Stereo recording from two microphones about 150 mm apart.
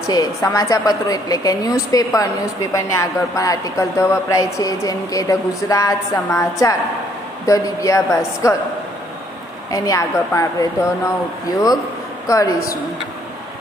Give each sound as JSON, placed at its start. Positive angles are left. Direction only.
{"t": 0.1, "sound": "a woman's voice", "side_deg": 25}
{"t": 9.7, "sound": "a woman's voice", "side_deg": 20}
{"t": 12.3, "sound": "a woman's voice", "side_deg": 25}